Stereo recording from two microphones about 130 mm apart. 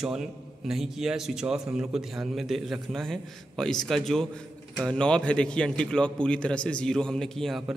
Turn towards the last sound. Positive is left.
turn(degrees=0)  # may be behind; listen again after turning